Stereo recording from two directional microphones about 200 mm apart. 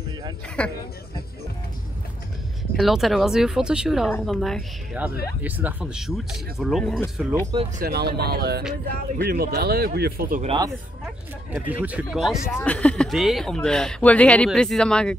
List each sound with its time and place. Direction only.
0.6 s speech: 5° left (ahead or behind)
2.7 s speech: centre (ahead or behind)
7.8 s speech: 50° right (ahead or behind)
10.4 s speech: 25° right (ahead or behind)
11.5 s speech: 5° right (ahead or behind)